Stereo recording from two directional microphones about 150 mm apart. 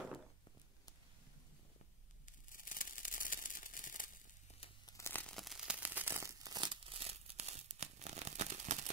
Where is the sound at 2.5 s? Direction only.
65° left (ahead or behind).